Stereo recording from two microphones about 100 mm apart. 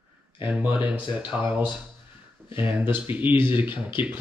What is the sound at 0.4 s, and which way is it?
Speech, 20° right (ahead or behind).